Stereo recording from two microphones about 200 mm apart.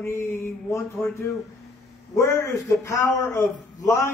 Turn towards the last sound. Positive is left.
turn(degrees=20)  # may be behind; listen again after turning